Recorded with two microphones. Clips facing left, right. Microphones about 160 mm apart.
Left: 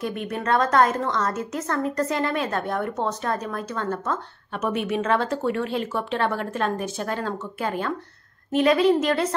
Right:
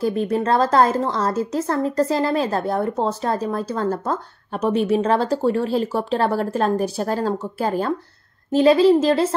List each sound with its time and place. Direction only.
0.0 s a woman's voice: 30° right (ahead or behind)